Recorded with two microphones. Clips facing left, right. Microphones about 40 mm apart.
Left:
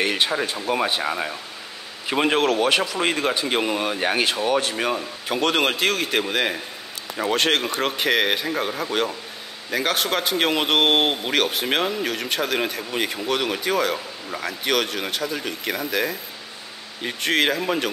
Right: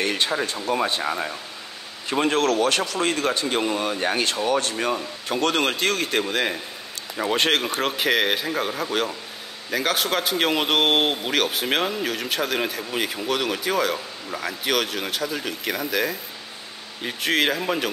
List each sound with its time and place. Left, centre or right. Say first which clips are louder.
0.0 s a man's voice: left 1 dB; centre